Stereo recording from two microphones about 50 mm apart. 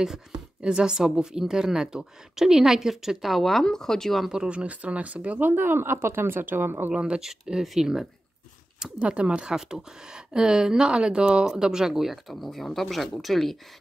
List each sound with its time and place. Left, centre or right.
0.0 s a woman's voice: centre
4.5 s speech: right
5.5 s speech: right
6.9 s a woman's voice: centre
9.0 s a woman's voice: right; by 13.6 s centre